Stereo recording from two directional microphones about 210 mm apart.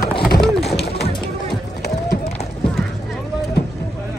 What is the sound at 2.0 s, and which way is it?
Run, 50° left (ahead or behind).